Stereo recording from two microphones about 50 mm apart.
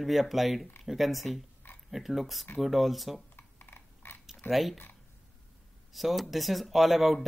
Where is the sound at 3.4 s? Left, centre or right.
Left.